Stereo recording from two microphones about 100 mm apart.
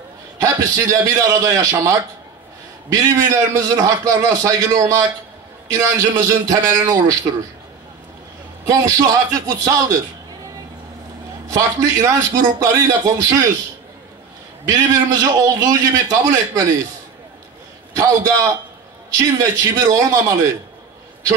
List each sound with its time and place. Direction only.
0.4 s a man's voice: 30° right (ahead or behind)
3.0 s a man's voice: 35° right (ahead or behind)
8.6 s a man's voice: 35° right (ahead or behind)
11.5 s a man's voice: 30° right (ahead or behind)
14.7 s a man's voice: 35° right (ahead or behind)
18.0 s a man's voice: 30° right (ahead or behind)